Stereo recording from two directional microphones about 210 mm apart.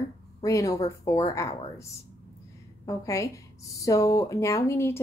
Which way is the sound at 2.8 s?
15° left (ahead or behind).